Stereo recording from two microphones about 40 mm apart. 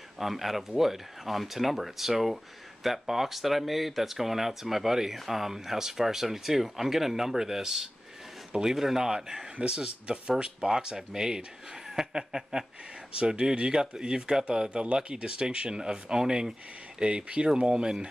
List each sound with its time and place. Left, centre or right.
0.2 s speech: centre
13.1 s speech: right